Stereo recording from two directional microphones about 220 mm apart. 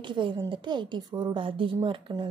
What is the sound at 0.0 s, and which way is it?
A woman's voice, 20° right (ahead or behind).